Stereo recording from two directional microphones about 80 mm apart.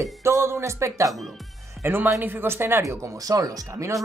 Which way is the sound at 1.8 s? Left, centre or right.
Right.